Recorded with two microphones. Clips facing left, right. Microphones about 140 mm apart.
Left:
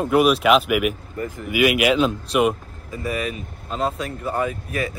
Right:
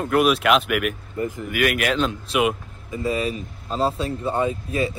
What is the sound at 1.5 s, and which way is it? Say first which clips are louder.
Speech: left 5 dB; 5° left (ahead or behind).